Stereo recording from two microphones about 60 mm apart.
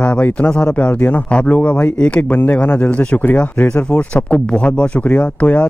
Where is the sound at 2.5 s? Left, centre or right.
Left.